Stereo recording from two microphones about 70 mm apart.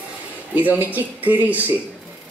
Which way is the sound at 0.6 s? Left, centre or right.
Right.